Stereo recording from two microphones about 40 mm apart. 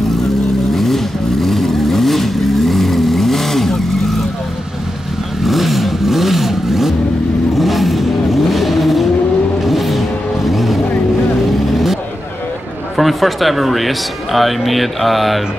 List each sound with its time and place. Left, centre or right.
0.7 s vehicle: centre
5.4 s vehicle: centre
12.9 s speech: centre